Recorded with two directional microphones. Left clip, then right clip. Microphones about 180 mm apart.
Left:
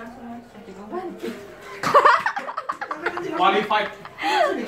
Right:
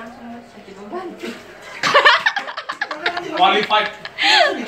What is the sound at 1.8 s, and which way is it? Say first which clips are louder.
Laughter: right 3 dB; centre (ahead or behind).